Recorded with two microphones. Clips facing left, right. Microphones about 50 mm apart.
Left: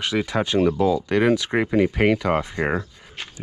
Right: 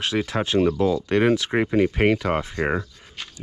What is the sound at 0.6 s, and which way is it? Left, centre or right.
Speech, centre.